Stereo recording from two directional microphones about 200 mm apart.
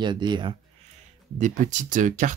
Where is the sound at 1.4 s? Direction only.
40° right (ahead or behind).